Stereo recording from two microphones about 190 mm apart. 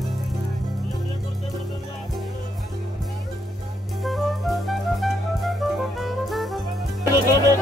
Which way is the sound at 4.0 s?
Centre (ahead or behind).